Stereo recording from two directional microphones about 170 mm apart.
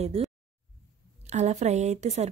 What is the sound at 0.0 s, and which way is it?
A woman's voice, 35° right (ahead or behind).